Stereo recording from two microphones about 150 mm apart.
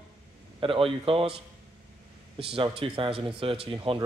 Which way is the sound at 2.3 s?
35° right (ahead or behind).